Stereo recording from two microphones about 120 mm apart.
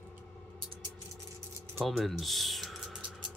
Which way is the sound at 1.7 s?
Centre (ahead or behind).